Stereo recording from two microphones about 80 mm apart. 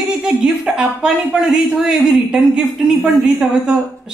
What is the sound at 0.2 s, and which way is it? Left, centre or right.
Speech, centre.